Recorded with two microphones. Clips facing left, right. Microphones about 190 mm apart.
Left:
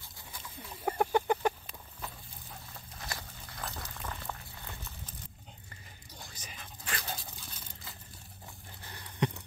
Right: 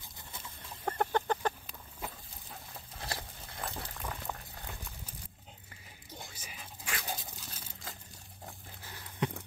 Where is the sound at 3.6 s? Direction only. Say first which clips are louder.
Right 1 dB; 25° right (ahead or behind).